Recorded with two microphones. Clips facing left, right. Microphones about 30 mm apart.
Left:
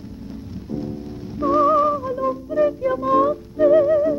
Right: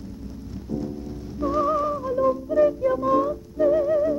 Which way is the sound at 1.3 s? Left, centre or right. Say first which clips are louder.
Left 6 dB; left.